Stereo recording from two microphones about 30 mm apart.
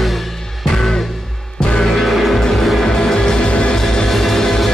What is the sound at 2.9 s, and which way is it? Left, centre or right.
Music, left.